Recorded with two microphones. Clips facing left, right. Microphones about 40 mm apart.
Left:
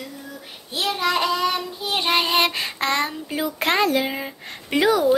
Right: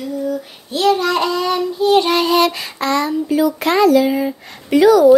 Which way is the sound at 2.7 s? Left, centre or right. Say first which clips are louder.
Right 5 dB; left.